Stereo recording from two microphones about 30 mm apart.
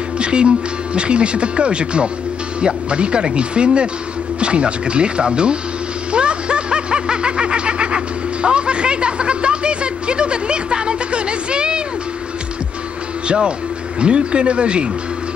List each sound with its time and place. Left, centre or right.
0.2 s music: right
0.9 s speech: right
6.1 s snicker: right
13.9 s speech: right